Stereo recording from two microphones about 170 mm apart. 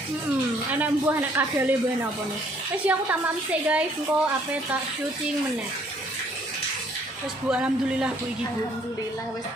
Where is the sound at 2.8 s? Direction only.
10° right (ahead or behind).